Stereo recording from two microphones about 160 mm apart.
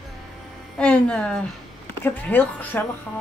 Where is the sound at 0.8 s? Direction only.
5° left (ahead or behind).